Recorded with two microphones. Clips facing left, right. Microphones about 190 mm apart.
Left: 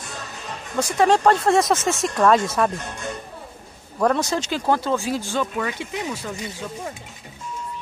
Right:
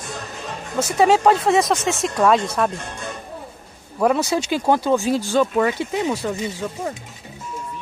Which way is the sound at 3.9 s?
10° right (ahead or behind).